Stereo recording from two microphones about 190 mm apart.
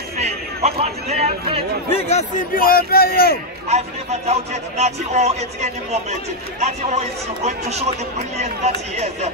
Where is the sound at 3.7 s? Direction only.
35° right (ahead or behind).